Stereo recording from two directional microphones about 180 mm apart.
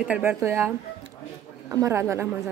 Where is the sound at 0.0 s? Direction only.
10° right (ahead or behind).